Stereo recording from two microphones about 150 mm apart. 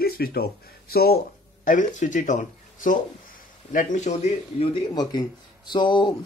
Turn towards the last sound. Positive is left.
turn(degrees=30)  # may be behind; listen again after turning